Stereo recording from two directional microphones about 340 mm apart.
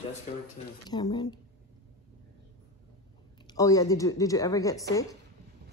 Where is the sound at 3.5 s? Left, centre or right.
Centre.